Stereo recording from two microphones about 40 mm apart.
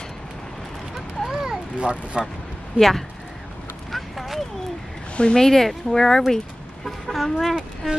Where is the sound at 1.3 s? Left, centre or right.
Centre.